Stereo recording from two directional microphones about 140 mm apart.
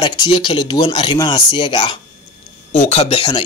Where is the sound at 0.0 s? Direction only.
35° left (ahead or behind).